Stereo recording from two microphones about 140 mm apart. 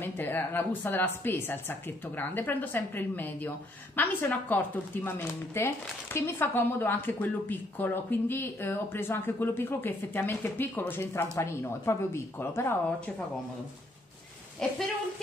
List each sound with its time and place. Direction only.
0.0 s speech: 15° left (ahead or behind)
14.6 s speech: 5° left (ahead or behind)